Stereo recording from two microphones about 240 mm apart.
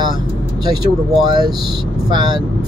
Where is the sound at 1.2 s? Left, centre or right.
Centre.